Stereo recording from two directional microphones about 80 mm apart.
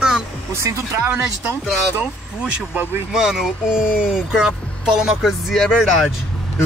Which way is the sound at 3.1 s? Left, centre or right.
Centre.